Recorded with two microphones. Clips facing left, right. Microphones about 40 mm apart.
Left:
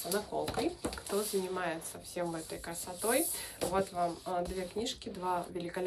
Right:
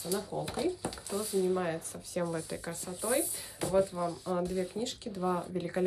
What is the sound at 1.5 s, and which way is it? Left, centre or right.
Speech, centre.